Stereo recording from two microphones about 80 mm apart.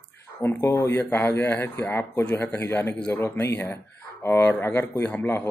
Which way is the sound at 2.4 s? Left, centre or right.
Left.